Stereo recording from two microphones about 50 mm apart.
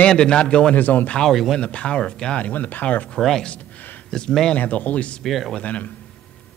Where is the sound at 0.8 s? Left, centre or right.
Left.